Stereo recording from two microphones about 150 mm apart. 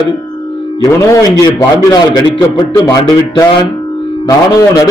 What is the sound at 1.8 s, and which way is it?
A man's voice, 25° left (ahead or behind).